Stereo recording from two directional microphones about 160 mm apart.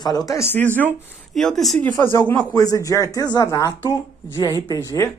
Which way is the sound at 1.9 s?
15° left (ahead or behind).